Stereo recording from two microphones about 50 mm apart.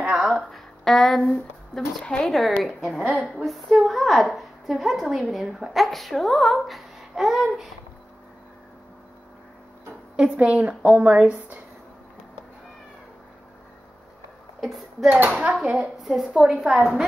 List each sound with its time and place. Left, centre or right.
0.1 s music: centre
0.5 s speech: centre
2.2 s a woman's voice: centre
10.1 s a woman's voice: right
14.6 s speech: centre
15.0 s speech: right
15.6 s a woman's voice: centre
16.0 s a woman's voice: centre
16.4 s a woman's voice: centre